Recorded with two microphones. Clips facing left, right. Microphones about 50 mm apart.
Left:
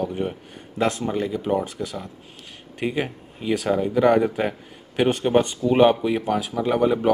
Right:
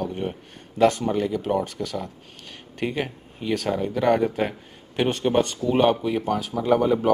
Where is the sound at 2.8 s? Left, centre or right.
Centre; by 6.2 s left.